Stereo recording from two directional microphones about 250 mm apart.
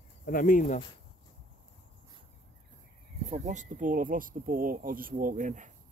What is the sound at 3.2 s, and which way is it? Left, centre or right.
Speech, right.